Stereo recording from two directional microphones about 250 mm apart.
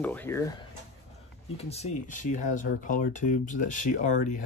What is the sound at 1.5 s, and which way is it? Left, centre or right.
Speech, left.